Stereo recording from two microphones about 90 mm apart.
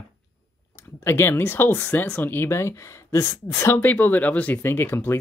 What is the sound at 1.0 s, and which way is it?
Speech, 25° left (ahead or behind).